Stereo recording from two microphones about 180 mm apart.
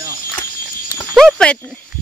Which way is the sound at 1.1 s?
5° left (ahead or behind).